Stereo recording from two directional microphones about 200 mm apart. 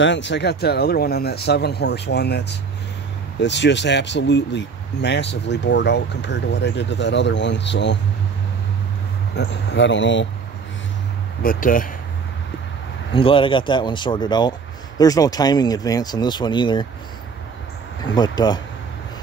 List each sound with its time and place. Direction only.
0.0 s speech: 60° left (ahead or behind)
9.3 s speech: 60° left (ahead or behind)
11.4 s speech: 45° left (ahead or behind)
13.1 s speech: 25° left (ahead or behind)
18.0 s speech: 20° left (ahead or behind)